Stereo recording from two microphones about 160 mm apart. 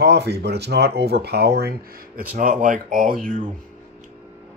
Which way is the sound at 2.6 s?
55° right (ahead or behind).